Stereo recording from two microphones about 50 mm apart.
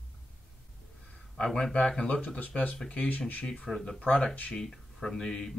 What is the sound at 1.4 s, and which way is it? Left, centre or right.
Speech, centre.